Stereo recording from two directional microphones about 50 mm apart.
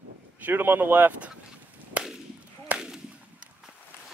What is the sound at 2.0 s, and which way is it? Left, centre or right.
Whip, right.